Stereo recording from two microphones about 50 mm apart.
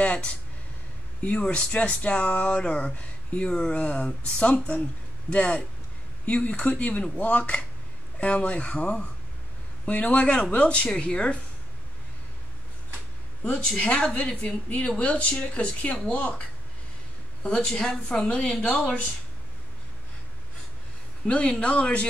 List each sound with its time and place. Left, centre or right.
0.0 s a sound: left
1.2 s speech: left
13.4 s speech: left
21.3 s speech: left